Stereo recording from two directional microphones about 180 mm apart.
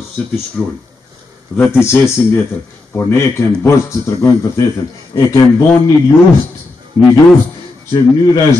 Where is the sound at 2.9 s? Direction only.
15° left (ahead or behind).